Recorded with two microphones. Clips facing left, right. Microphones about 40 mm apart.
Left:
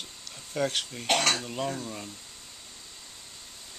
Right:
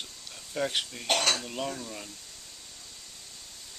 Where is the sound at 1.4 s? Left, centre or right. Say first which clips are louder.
Left 2 dB; centre.